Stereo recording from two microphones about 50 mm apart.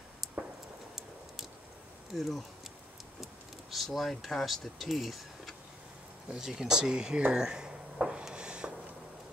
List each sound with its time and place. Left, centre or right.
0.9 s tick-tock: centre
2.1 s speech: centre
3.7 s speech: centre
7.3 s a sound: centre